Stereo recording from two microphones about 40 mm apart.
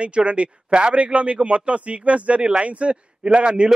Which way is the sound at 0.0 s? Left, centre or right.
Right.